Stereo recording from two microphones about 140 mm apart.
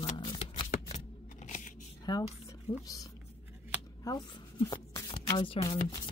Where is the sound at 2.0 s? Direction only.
25° left (ahead or behind).